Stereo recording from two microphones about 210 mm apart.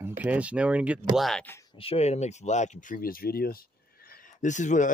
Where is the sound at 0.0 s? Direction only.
5° right (ahead or behind).